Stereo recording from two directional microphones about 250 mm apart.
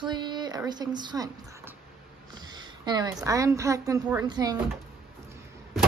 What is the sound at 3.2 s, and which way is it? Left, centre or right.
Speech, centre.